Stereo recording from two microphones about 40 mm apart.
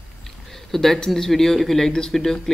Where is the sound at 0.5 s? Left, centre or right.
Centre.